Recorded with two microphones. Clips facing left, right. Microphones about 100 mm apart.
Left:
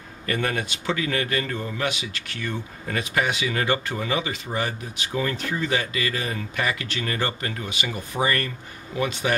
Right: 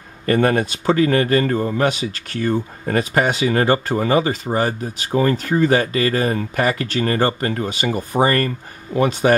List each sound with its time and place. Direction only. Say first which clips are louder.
0.3 s a man's voice: right 10 dB; 40° right (ahead or behind)